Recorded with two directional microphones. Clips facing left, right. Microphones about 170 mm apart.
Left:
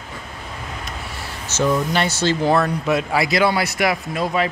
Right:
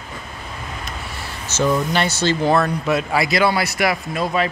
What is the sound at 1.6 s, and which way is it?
Speech, 5° left (ahead or behind).